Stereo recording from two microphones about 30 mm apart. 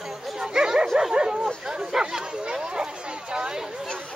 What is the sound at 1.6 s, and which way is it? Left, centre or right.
Chatter, right.